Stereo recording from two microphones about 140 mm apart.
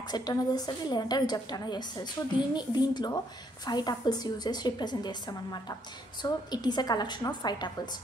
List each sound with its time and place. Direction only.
0.1 s a woman's voice: 30° left (ahead or behind)